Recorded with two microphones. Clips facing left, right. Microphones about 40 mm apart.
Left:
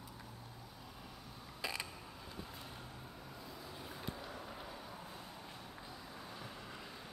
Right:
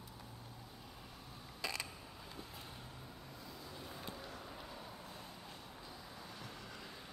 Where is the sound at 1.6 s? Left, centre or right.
Centre.